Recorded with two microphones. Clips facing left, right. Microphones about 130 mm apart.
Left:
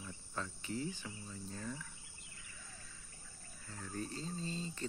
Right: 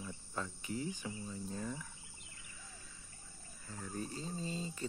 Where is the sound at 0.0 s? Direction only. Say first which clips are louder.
Right 2 dB; 10° right (ahead or behind).